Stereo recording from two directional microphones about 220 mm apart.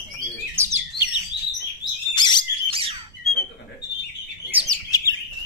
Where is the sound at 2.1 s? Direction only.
20° left (ahead or behind).